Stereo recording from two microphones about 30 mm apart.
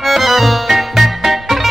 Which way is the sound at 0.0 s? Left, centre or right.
Centre.